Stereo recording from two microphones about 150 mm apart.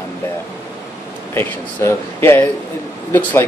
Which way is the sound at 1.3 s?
15° left (ahead or behind).